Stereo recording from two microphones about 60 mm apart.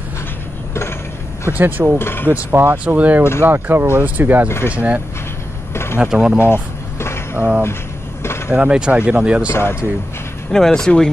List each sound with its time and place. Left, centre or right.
1.5 s speech: right
2.0 s speech: left
2.7 s speech: right
4.5 s speech: left
4.7 s speech: right
6.4 s vehicle: left
7.3 s speech: right
9.5 s speech: left
10.5 s speech: centre